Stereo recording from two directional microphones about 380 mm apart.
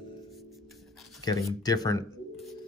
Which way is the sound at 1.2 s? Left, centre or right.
Centre.